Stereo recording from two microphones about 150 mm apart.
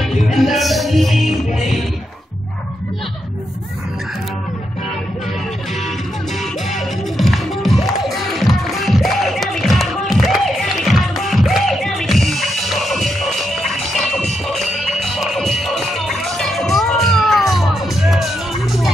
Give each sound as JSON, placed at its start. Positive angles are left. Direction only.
{"t": 0.0, "sound": "music", "side_deg": 0}
{"t": 6.7, "sound": "music", "side_deg": 0}